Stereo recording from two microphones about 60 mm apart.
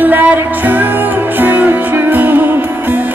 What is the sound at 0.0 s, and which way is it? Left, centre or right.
Music, right.